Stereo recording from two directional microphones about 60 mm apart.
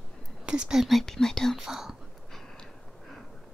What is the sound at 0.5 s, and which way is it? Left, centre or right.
Speech, centre.